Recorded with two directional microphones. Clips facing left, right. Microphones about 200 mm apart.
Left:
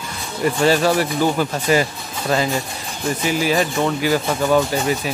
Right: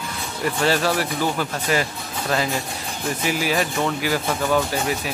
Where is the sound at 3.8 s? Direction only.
10° left (ahead or behind).